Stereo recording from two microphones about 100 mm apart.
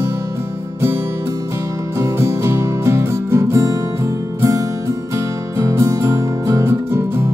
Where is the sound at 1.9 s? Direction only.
30° right (ahead or behind).